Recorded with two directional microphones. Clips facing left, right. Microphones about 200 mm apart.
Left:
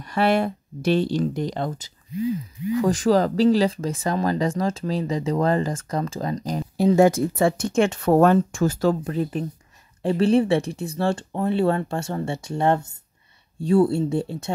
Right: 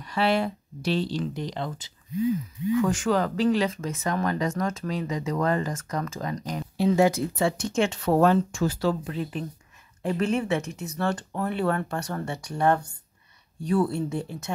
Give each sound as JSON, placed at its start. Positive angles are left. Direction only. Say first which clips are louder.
{"t": 0.0, "sound": "speech", "louder": "left 4 dB", "side_deg": 50}
{"t": 2.8, "sound": "speech", "louder": "left 7 dB", "side_deg": 35}
{"t": 7.0, "sound": "speech", "louder": "left 6 dB", "side_deg": 50}